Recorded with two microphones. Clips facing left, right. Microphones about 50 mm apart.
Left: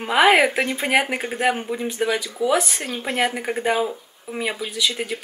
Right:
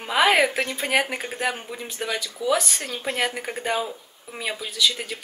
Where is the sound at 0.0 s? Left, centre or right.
Centre.